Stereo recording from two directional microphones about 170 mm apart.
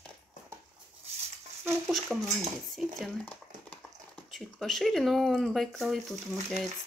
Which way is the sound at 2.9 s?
10° left (ahead or behind).